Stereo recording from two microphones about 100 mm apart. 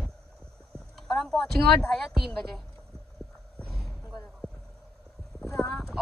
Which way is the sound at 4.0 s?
45° left (ahead or behind).